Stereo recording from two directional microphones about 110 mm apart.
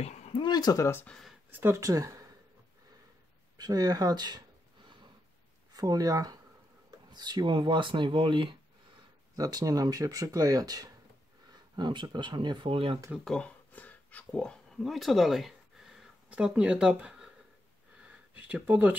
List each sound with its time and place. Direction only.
0.0 s a sound: 85° left
0.3 s speech: 40° left (ahead or behind)
1.5 s speech: 20° right (ahead or behind)
3.5 s speech: 35° right (ahead or behind)
5.7 s speech: 35° right (ahead or behind)
9.4 s speech: 35° right (ahead or behind)
11.7 s speech: 45° right (ahead or behind)
13.2 s speech: 10° left (ahead or behind); by 17.3 s 10° right (ahead or behind)
18.0 s a sound: 15° right (ahead or behind)